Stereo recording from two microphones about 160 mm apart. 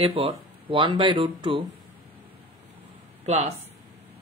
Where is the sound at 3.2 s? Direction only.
45° right (ahead or behind).